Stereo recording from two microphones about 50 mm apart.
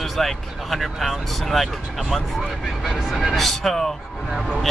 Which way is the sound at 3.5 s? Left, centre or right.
Centre.